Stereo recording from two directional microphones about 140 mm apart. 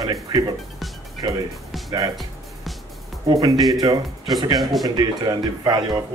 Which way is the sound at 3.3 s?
25° right (ahead or behind).